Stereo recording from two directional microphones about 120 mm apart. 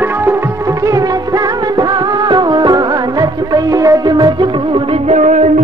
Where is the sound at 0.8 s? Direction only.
30° right (ahead or behind).